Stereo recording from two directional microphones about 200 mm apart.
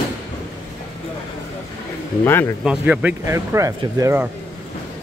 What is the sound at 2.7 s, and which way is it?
Speech, 5° right (ahead or behind).